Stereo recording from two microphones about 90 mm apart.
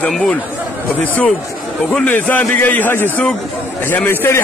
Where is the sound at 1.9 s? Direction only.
15° left (ahead or behind).